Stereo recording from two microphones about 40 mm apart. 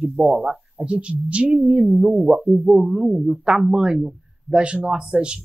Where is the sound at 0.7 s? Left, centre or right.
Right.